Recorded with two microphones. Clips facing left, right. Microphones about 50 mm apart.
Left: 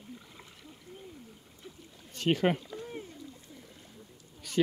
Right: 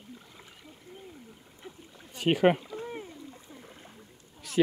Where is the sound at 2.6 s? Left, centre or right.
Right.